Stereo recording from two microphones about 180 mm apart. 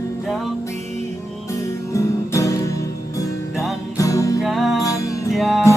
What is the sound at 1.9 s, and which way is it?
Music, 15° left (ahead or behind).